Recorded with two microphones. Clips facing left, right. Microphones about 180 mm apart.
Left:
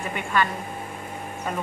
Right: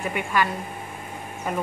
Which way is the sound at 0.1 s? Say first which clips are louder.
Left 1 dB; 10° right (ahead or behind).